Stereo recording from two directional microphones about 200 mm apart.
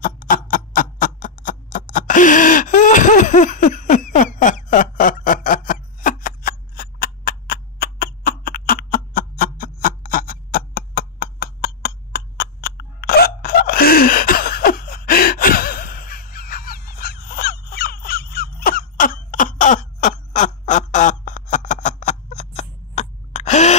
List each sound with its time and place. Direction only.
0.0 s clock: 45° left (ahead or behind)
12.4 s hiccup: 50° left (ahead or behind); by 23.7 s 35° left (ahead or behind)